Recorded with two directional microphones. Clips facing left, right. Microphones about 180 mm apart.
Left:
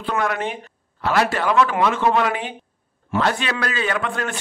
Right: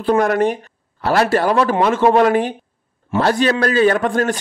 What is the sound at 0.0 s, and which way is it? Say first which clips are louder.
A man's voice: right 8 dB; 45° right (ahead or behind).